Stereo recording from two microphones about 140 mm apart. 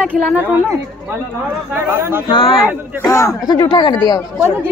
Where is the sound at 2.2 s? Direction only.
40° left (ahead or behind).